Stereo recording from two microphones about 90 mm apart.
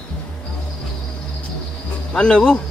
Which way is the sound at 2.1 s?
10° left (ahead or behind).